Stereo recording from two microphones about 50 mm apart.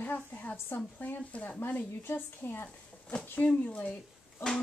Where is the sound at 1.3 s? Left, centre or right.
Left.